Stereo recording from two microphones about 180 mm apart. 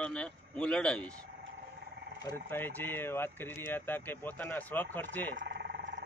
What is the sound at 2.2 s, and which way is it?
Speech, 15° left (ahead or behind).